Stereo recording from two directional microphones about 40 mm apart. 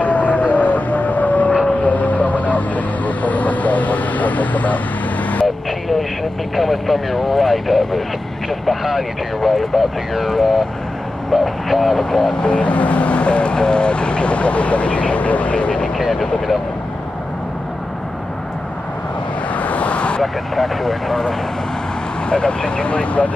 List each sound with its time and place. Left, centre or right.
0.0 s siren: left
1.7 s vehicle: left
6.5 s speech: centre
12.0 s speech: centre
12.4 s speech: left
15.5 s vehicle: left
16.0 s speech: centre
19.5 s vehicle: left
20.5 s speech: centre
22.3 s speech: left